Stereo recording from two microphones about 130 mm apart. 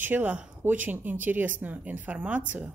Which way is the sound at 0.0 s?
15° right (ahead or behind).